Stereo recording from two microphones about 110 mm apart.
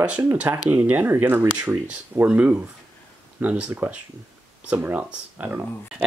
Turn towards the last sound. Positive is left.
turn(degrees=-20)  # may be behind; listen again after turning